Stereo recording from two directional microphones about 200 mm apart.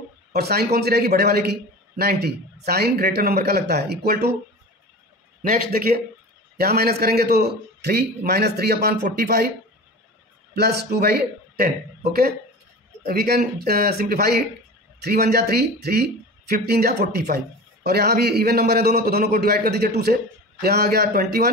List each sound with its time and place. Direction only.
0.3 s a man's voice: 55° right (ahead or behind)
5.4 s a man's voice: 45° right (ahead or behind)
10.5 s a man's voice: 55° right (ahead or behind)